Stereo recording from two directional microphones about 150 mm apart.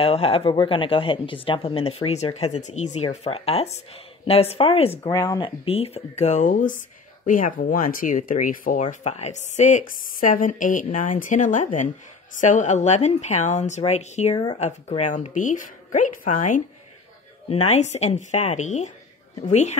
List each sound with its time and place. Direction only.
0.0 s speech: 40° left (ahead or behind)
5.0 s speech: 25° left (ahead or behind)
5.7 s a woman's voice: 45° left (ahead or behind); by 8.8 s 60° left (ahead or behind)
8.8 s a woman's voice: 50° left (ahead or behind)
14.3 s speech: 30° left (ahead or behind)
14.6 s a woman's voice: 50° left (ahead or behind)